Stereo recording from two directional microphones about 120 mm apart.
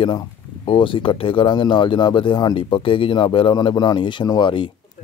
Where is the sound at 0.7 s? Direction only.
45° left (ahead or behind).